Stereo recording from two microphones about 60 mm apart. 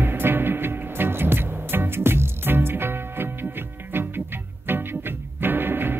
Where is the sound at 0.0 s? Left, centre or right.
Right.